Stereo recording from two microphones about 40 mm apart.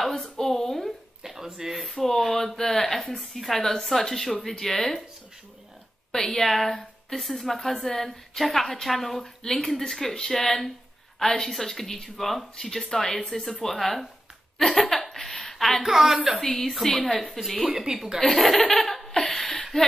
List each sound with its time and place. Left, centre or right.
0.1 s a sound: centre
1.2 s a sound: centre
1.8 s speech: centre
6.1 s a woman's voice: centre
14.6 s chuckle: centre
15.8 s speech: centre
16.3 s a woman's voice: centre
17.6 s speech: centre
18.2 s laughter: centre